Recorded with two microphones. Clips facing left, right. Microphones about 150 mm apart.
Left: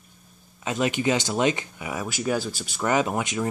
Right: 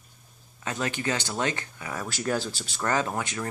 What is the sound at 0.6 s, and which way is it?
Speech, 15° left (ahead or behind).